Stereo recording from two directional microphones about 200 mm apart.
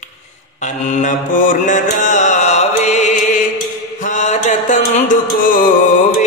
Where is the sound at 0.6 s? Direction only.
35° left (ahead or behind).